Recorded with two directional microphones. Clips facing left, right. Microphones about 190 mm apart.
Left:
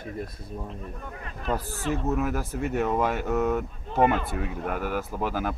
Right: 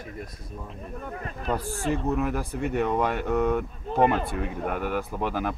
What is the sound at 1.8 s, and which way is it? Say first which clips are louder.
Speech: right 1 dB; centre (ahead or behind).